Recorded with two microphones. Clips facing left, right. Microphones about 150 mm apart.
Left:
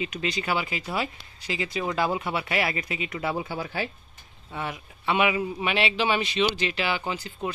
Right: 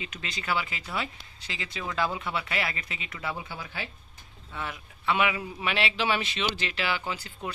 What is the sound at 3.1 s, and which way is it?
Speech, 30° left (ahead or behind).